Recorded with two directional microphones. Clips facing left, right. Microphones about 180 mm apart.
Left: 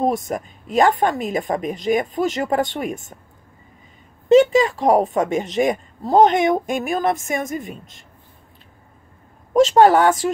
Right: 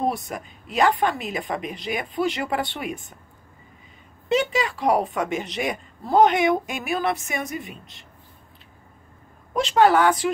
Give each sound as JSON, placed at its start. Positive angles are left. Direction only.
{"t": 0.0, "sound": "speech", "side_deg": 45}
{"t": 4.3, "sound": "speech", "side_deg": 45}
{"t": 9.5, "sound": "speech", "side_deg": 45}